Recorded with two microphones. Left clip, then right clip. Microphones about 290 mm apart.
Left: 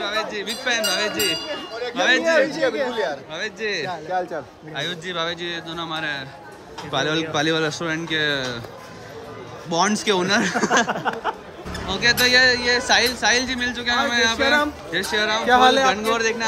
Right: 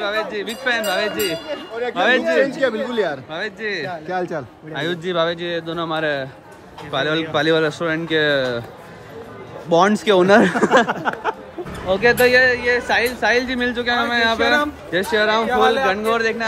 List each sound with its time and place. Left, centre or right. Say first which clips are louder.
0.0 s speech: right 3 dB; centre
2.9 s speech: right 3 dB; right
3.3 s speech: right 1 dB; centre
9.7 s speech: right 5 dB; centre
11.9 s speech: right 3 dB; centre
15.5 s a man's voice: left 5 dB; left
15.9 s speech: right 2 dB; centre